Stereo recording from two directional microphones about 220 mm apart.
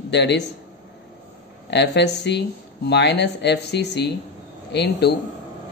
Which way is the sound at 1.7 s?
50° left (ahead or behind).